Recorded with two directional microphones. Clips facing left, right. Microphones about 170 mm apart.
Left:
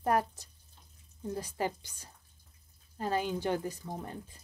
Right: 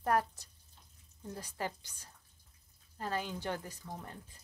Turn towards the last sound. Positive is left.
turn(degrees=20)  # may be behind; listen again after turning